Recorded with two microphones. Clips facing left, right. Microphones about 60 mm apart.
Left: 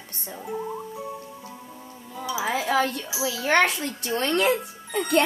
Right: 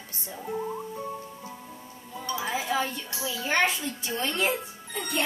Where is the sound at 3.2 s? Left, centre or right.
Left.